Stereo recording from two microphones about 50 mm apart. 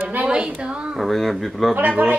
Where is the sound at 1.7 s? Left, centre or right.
Right.